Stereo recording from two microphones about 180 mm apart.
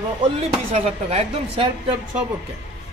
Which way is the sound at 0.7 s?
35° right (ahead or behind).